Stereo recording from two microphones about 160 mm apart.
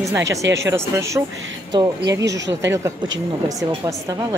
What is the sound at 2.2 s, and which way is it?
Speech, 90° right.